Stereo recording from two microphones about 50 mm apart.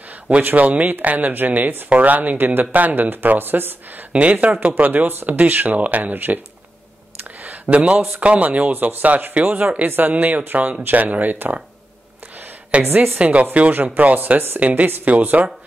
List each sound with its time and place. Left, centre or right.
0.6 s a woman's voice: right
4.1 s speech: right
7.3 s a sound: right
8.2 s speech: right
12.8 s a woman's voice: right
13.2 s speech: right